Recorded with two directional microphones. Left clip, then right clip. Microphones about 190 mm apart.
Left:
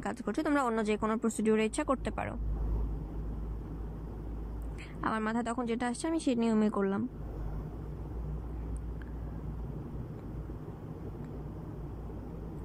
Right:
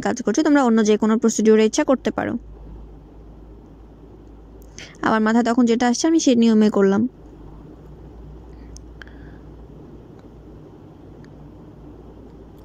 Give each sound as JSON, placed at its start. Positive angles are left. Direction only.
{"t": 0.0, "sound": "speech", "side_deg": -40}
{"t": 4.7, "sound": "speech", "side_deg": -45}